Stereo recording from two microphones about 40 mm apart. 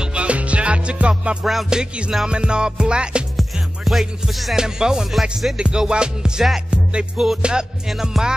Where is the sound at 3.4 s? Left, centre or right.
Centre.